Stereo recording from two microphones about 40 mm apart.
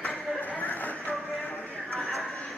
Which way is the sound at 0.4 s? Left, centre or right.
Left.